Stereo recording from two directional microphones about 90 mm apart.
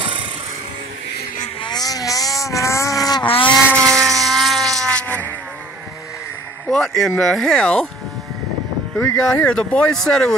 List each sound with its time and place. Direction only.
1.6 s vehicle: 50° left (ahead or behind)
3.2 s vehicle: 70° left (ahead or behind)
3.7 s motorboat: 5° left (ahead or behind)
6.7 s speech: 5° left (ahead or behind)
9.1 s speech: 10° left (ahead or behind)